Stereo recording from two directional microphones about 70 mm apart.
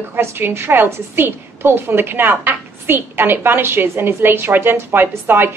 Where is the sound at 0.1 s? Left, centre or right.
Right.